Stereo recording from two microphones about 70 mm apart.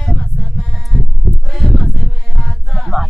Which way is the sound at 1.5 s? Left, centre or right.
Centre.